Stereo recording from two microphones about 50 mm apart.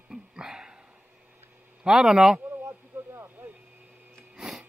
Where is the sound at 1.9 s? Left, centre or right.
Centre.